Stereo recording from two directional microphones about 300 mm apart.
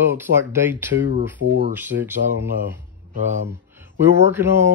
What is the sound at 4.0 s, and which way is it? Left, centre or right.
Speech, centre.